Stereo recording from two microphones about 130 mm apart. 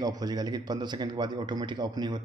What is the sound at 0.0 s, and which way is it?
Speech, 30° right (ahead or behind).